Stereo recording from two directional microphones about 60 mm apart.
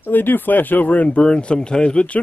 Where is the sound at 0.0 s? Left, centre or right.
Left.